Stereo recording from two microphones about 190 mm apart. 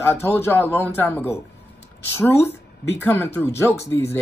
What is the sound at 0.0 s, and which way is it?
Speech, 15° left (ahead or behind).